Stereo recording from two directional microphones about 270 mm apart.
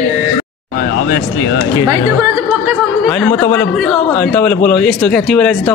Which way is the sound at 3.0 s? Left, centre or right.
Centre.